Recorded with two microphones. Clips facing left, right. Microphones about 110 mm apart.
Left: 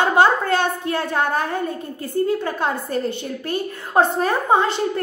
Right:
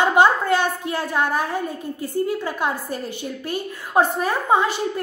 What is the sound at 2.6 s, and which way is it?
A woman's voice, 15° right (ahead or behind).